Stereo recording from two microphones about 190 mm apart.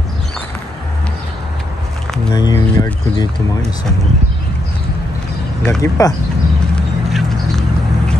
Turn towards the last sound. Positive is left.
turn(degrees=0)  # may be behind; listen again after turning